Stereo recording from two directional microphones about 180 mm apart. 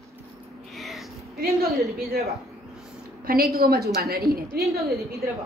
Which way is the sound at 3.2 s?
55° right (ahead or behind).